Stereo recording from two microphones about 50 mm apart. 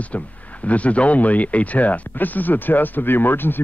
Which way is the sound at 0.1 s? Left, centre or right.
Left.